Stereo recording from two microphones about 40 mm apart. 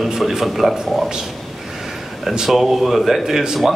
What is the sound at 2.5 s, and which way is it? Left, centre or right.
Speech, centre.